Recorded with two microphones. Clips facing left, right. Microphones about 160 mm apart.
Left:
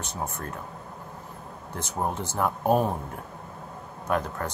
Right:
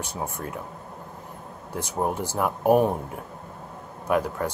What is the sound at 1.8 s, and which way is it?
Speech, 15° right (ahead or behind).